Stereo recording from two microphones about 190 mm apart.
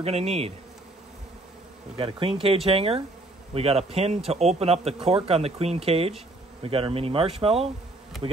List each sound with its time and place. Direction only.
0.0 s speech: 30° right (ahead or behind)
2.0 s speech: 30° right (ahead or behind)